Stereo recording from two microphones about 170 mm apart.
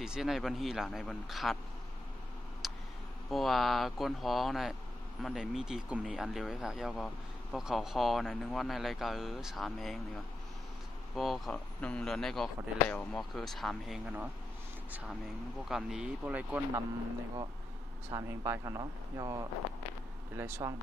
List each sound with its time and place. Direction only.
0.0 s speech: 5° right (ahead or behind)
2.6 s vehicle: centre (ahead or behind)
3.3 s speech: centre (ahead or behind)
11.1 s speech: centre (ahead or behind)
18.1 s speech: 20° right (ahead or behind)